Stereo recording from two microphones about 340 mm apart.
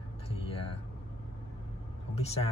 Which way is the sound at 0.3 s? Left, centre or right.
Centre.